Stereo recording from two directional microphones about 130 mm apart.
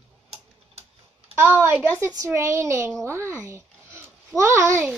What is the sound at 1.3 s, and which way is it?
A child's voice, 15° right (ahead or behind).